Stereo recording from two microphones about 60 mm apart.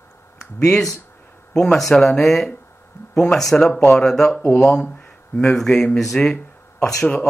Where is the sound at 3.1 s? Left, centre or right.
Centre.